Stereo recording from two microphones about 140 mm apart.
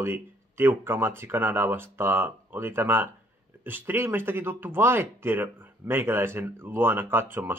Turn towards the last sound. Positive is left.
turn(degrees=-15)  # may be behind; listen again after turning